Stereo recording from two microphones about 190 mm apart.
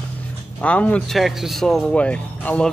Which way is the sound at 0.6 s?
5° left (ahead or behind).